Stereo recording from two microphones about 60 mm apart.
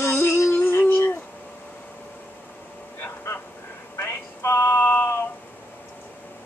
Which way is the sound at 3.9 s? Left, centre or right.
Left.